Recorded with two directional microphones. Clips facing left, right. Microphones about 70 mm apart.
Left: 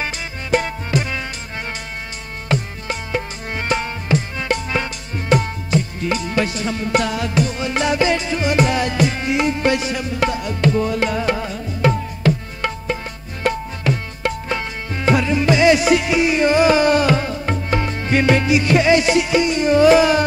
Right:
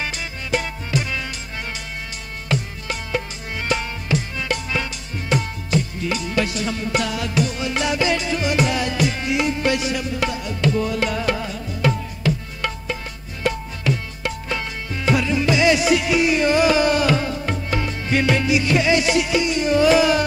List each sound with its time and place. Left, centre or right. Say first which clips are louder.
0.0 s music: left 2 dB; left
2.4 s music: left 3 dB; left
3.5 s tabla: left 2 dB; left
5.3 s music: left 5 dB; left
5.7 s music: left 2 dB; left
12.2 s music: left 4 dB; left
12.6 s tabla: left 4 dB; left
16.1 s music: left 2 dB; left